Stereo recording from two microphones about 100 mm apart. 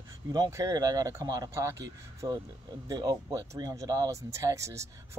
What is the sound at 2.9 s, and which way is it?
Speech, 40° right (ahead or behind).